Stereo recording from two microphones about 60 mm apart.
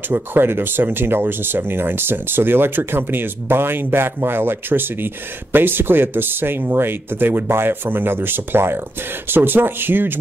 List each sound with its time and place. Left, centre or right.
0.1 s speech: right